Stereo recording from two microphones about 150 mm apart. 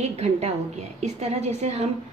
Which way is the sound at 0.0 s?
45° right (ahead or behind).